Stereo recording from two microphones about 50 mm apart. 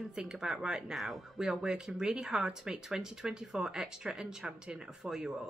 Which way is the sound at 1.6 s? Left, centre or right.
Centre.